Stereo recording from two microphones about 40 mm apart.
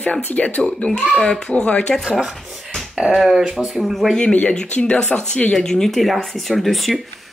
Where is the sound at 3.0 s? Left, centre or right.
Centre.